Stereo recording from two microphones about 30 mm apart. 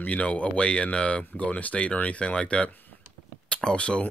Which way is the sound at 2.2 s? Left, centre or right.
Left.